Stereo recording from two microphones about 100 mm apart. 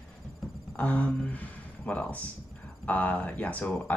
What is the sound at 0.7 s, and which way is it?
Speech, 15° left (ahead or behind).